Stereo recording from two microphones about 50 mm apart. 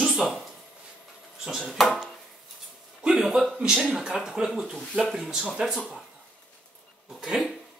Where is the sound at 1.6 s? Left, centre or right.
Centre.